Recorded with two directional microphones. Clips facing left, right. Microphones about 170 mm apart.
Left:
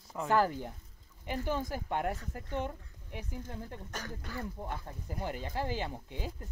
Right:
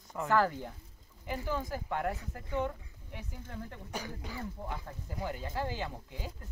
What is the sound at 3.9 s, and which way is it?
Speech, 10° right (ahead or behind).